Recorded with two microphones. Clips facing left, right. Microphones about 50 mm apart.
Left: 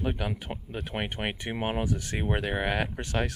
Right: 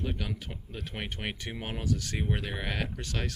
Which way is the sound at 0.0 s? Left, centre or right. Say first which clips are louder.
Left 4 dB; left.